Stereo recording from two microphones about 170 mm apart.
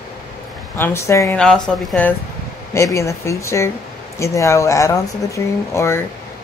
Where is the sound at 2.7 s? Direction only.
15° left (ahead or behind).